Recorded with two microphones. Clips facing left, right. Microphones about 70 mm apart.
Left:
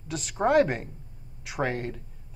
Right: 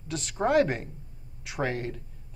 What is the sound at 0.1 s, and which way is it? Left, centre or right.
A man's voice, centre.